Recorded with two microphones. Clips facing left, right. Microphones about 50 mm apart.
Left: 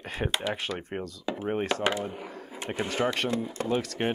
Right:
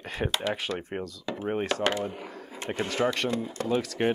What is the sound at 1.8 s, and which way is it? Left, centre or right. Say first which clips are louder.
Speech: right 1 dB; centre.